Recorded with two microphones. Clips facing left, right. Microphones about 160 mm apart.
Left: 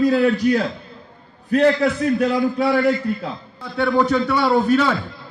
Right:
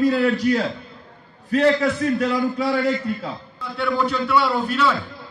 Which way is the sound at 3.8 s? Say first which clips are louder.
Left 5 dB; 45° left (ahead or behind).